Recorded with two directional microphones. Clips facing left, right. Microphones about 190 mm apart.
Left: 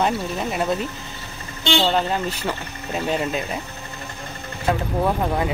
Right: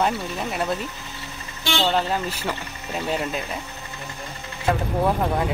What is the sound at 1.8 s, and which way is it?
Speech, centre (ahead or behind).